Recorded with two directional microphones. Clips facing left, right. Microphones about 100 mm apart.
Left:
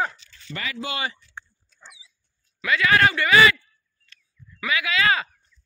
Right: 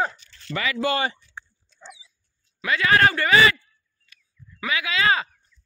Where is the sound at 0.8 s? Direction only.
35° right (ahead or behind).